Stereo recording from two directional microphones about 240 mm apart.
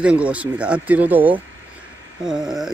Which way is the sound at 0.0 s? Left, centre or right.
Centre.